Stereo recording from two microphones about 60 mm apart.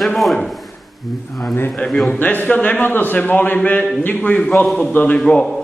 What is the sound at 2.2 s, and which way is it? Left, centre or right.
A man's voice, left.